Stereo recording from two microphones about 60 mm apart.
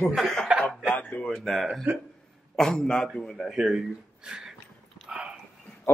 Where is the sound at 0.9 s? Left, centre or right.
Left.